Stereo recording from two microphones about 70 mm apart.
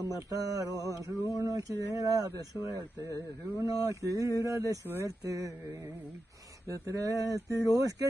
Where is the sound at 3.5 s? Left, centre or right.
Right.